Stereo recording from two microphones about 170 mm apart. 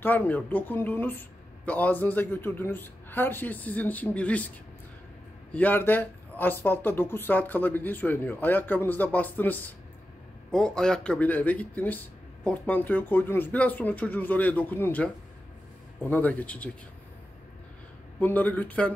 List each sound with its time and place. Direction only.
0.0 s speech: 10° left (ahead or behind)
5.5 s speech: 10° left (ahead or behind)
18.2 s speech: 10° left (ahead or behind)